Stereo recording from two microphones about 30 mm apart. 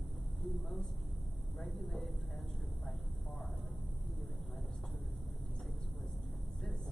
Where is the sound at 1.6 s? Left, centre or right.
Centre.